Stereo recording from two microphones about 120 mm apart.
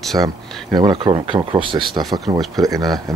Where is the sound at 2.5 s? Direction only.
30° right (ahead or behind).